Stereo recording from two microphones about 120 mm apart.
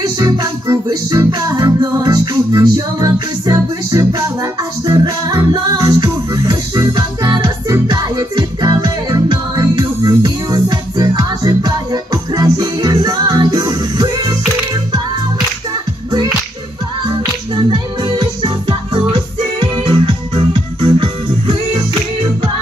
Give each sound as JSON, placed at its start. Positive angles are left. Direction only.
{"t": 0.0, "sound": "music", "side_deg": -30}
{"t": 17.6, "sound": "music", "side_deg": -45}